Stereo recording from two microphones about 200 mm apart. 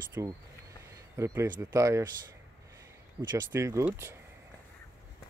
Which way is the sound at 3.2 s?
20° right (ahead or behind).